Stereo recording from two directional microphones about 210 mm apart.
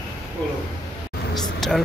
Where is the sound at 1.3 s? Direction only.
Centre (ahead or behind).